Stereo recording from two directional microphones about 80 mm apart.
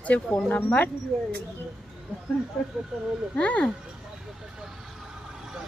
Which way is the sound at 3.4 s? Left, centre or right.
Centre.